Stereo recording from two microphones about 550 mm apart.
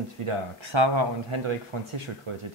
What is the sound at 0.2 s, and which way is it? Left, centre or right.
Speech, right.